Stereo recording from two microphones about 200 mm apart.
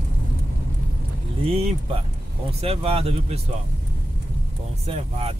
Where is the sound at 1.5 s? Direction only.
30° right (ahead or behind).